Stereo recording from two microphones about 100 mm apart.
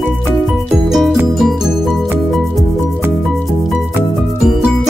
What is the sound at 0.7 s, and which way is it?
Music, centre (ahead or behind).